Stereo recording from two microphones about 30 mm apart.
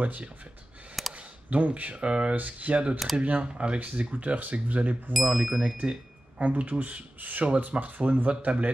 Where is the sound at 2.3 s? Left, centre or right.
Right.